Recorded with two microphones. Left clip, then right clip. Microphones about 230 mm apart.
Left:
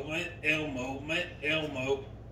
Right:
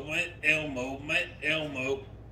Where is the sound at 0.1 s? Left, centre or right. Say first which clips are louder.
Right 4 dB; right.